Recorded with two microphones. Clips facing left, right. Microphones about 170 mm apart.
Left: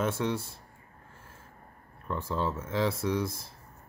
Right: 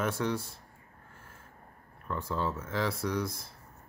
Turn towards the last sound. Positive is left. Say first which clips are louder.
# left 3 dB
turn(degrees=25)  # may be behind; listen again after turning